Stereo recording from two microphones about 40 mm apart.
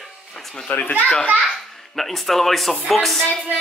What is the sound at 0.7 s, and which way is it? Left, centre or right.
Speech, left.